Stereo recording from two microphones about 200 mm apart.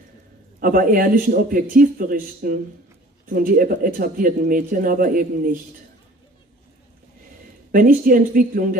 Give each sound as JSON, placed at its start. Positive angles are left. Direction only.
{"t": 0.6, "sound": "a man's voice", "side_deg": -45}
{"t": 7.7, "sound": "a man's voice", "side_deg": -45}